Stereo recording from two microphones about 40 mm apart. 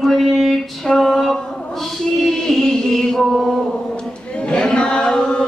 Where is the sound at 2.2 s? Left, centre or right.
Centre.